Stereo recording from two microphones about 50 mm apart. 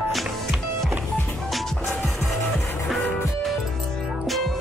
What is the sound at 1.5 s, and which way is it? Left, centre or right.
Music, centre.